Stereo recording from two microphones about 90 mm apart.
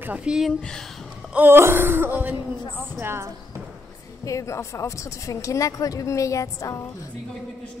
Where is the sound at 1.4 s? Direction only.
25° right (ahead or behind).